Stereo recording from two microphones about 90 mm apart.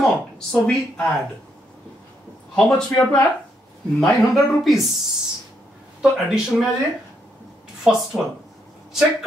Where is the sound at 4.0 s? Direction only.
Centre (ahead or behind).